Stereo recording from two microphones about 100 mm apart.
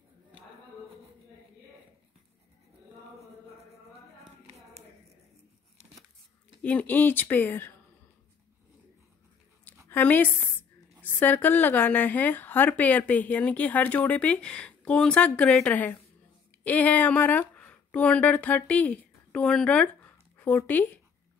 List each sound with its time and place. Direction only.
6.6 s a woman's voice: 15° left (ahead or behind)
9.8 s a woman's voice: 20° left (ahead or behind)